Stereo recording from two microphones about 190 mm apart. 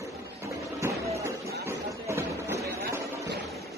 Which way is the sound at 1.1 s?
15° right (ahead or behind).